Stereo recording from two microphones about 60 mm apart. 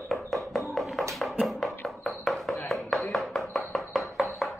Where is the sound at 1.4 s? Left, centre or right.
Centre.